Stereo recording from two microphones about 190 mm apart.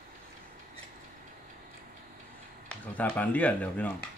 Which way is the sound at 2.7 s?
5° left (ahead or behind).